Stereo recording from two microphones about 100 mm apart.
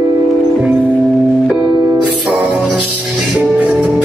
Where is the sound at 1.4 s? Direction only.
5° right (ahead or behind).